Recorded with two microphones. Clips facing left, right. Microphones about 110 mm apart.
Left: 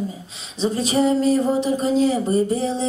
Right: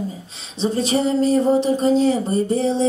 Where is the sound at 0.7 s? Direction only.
30° right (ahead or behind).